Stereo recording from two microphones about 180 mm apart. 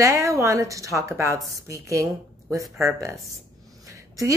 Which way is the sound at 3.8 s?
15° right (ahead or behind).